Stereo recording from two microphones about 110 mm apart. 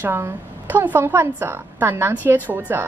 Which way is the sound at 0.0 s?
20° right (ahead or behind).